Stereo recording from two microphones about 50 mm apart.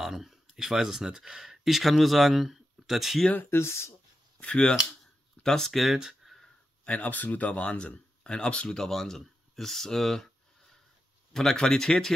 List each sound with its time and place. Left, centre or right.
0.0 s speech: centre
3.4 s speech: left
4.4 s speech: left
5.4 s speech: centre
6.2 s a sound: centre
6.9 s speech: left; by 10.3 s centre
11.3 s speech: centre